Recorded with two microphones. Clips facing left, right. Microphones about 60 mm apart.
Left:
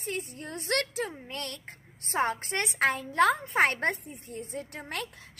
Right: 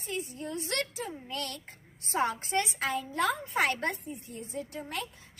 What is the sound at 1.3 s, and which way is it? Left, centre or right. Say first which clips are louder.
A woman's voice: right 1 dB; left.